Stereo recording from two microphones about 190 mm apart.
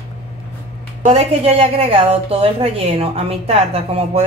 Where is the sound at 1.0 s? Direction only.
35° right (ahead or behind).